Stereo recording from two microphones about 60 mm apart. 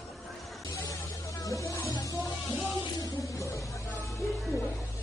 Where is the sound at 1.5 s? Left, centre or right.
Left.